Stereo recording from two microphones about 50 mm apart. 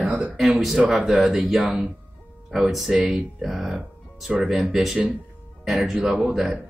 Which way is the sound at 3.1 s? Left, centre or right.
Centre.